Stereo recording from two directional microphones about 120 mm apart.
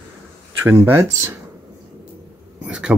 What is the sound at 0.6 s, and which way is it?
Speech, 15° right (ahead or behind).